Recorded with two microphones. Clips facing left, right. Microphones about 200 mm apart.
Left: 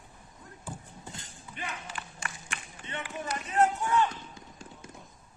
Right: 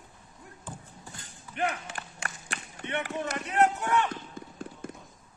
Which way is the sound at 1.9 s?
45° right (ahead or behind).